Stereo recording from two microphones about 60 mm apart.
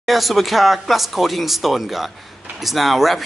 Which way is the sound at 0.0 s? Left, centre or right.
Centre.